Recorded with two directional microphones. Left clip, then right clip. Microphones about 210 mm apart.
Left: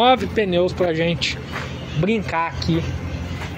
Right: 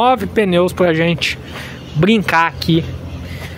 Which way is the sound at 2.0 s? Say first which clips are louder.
Right 8 dB; 50° right (ahead or behind).